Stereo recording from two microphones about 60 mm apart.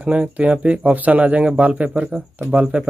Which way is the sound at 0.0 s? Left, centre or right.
Right.